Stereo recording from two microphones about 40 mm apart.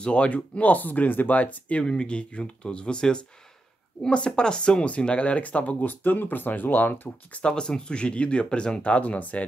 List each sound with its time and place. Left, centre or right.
0.0 s speech: left
1.9 s speech: left
4.8 s speech: left
7.3 s speech: left